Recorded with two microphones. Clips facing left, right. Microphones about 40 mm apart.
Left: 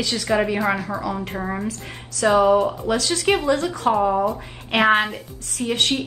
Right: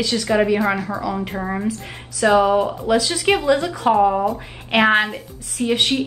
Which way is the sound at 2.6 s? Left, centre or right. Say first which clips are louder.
Right 3 dB; centre.